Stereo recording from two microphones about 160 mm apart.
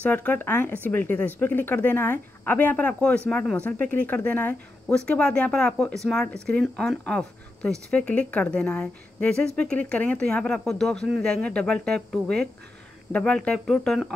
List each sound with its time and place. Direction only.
0.0 s speech: 10° left (ahead or behind)